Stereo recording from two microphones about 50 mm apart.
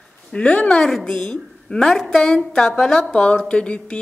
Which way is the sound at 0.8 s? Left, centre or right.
Centre.